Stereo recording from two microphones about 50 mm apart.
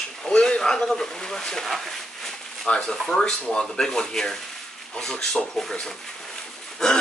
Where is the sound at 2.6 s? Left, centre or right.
Left.